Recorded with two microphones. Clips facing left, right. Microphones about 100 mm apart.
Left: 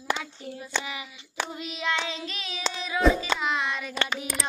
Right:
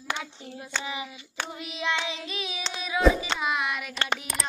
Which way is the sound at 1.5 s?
15° right (ahead or behind).